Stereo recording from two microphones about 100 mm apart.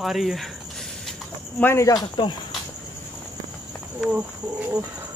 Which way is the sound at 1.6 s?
20° left (ahead or behind).